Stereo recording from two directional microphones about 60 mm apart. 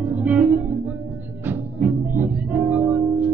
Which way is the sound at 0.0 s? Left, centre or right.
Right.